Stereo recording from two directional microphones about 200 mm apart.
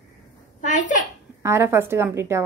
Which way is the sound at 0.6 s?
40° left (ahead or behind).